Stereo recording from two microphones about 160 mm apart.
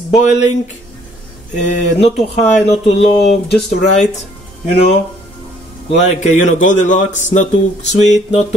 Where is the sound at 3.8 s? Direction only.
50° left (ahead or behind).